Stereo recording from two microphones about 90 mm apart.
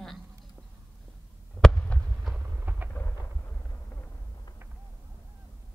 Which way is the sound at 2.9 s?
20° left (ahead or behind).